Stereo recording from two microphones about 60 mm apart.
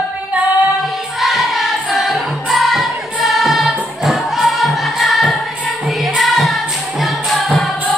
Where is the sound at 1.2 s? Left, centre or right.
Centre.